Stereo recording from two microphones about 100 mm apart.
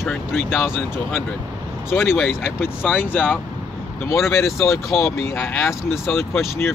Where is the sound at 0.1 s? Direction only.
20° left (ahead or behind).